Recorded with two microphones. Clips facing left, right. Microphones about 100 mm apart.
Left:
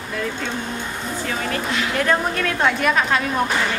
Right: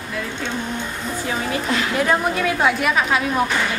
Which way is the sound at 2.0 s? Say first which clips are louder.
Right 1 dB; 10° right (ahead or behind).